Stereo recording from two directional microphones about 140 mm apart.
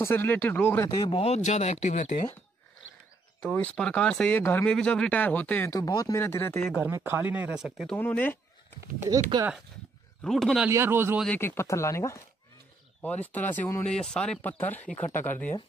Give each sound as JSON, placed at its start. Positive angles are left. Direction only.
{"t": 0.0, "sound": "speech", "side_deg": 15}
{"t": 0.8, "sound": "speech", "side_deg": 30}
{"t": 1.2, "sound": "speech", "side_deg": 50}
{"t": 3.5, "sound": "speech", "side_deg": 5}
{"t": 4.4, "sound": "speech", "side_deg": 20}
{"t": 4.6, "sound": "speech", "side_deg": 5}
{"t": 5.8, "sound": "speech", "side_deg": 25}
{"t": 6.8, "sound": "speech", "side_deg": -15}
{"t": 8.0, "sound": "speech", "side_deg": 10}
{"t": 10.2, "sound": "a man's voice", "side_deg": 0}
{"t": 10.7, "sound": "speech", "side_deg": -15}
{"t": 11.2, "sound": "speech", "side_deg": 15}
{"t": 13.8, "sound": "speech", "side_deg": 5}